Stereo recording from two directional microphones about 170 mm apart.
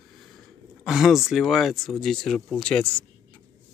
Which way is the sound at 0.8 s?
Centre (ahead or behind).